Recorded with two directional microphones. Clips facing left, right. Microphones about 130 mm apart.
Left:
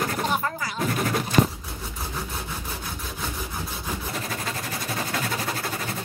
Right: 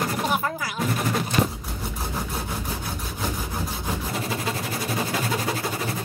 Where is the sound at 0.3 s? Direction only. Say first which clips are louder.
Right 1 dB; 5° right (ahead or behind).